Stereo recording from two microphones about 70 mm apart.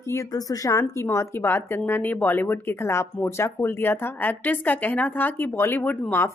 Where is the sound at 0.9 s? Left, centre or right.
Left.